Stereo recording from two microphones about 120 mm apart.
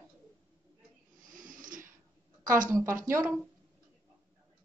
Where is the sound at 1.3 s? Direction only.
90° right.